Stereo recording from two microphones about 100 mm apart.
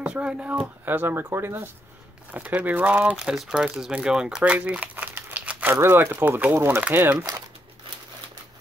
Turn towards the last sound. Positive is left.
turn(degrees=-15)  # may be behind; listen again after turning